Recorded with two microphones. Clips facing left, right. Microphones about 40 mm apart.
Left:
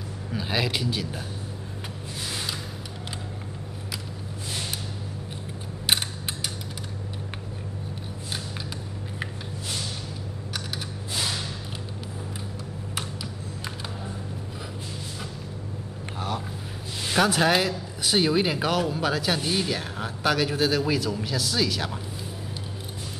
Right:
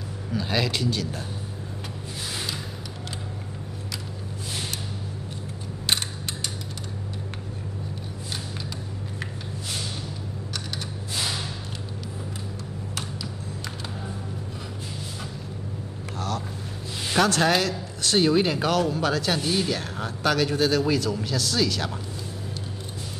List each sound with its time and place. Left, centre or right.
0.3 s speech: centre
11.1 s music: centre
16.2 s a sound: centre
17.1 s speech: centre